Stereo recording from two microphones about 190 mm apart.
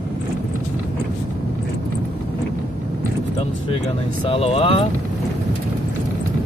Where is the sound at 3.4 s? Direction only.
30° left (ahead or behind).